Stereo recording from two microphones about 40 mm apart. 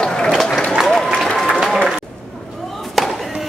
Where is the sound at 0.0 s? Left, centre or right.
Centre.